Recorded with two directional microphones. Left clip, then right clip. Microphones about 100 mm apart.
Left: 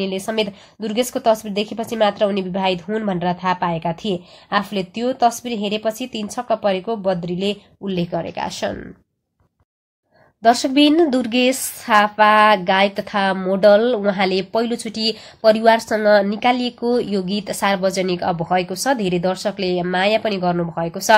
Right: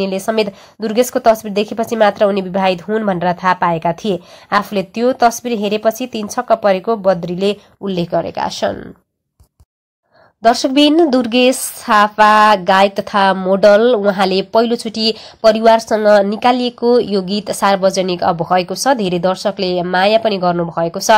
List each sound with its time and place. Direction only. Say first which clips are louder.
0.0 s a woman's voice: right 5 dB; 60° right (ahead or behind); by 8.7 s 40° right (ahead or behind)
10.4 s speech: right 3 dB; 35° right (ahead or behind)
20.8 s speech: right 3 dB; 40° right (ahead or behind)